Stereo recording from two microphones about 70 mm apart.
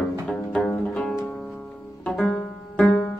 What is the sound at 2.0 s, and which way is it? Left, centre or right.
Music, centre.